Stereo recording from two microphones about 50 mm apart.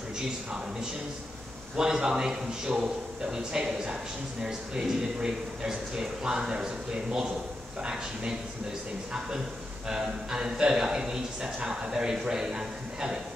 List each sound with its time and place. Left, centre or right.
1.8 s a man's voice: centre
9.8 s a man's voice: centre